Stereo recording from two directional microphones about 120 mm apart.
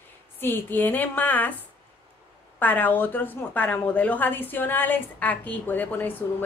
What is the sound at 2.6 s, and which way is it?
A woman's voice, 15° left (ahead or behind).